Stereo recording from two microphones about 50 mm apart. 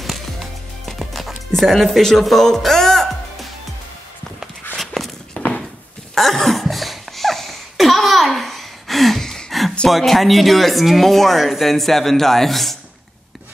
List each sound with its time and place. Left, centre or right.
0.8 s music: centre
1.5 s speech: centre
4.7 s walk: centre
5.4 s a sound: left
6.1 s a sound: centre
9.8 s speech: centre